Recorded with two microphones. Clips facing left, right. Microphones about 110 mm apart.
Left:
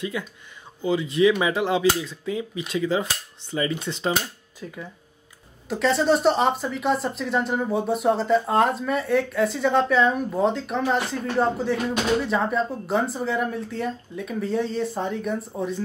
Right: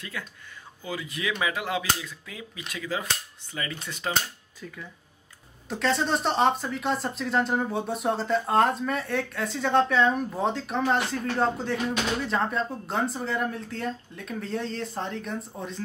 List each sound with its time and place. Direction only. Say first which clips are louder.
0.2 s speech: left 6 dB; 15° left (ahead or behind)
4.1 s speech: right 1 dB; 15° left (ahead or behind)
5.7 s speech: left 5 dB; centre (ahead or behind)